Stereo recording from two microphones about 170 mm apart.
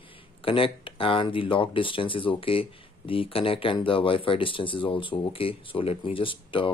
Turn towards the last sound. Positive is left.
turn(degrees=30)  # may be behind; listen again after turning